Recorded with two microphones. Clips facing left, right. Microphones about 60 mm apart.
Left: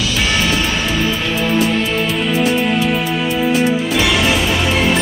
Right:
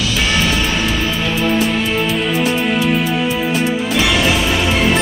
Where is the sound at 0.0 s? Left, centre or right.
Centre.